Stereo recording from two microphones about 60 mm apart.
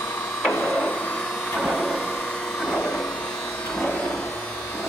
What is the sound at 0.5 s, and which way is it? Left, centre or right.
Printer, left.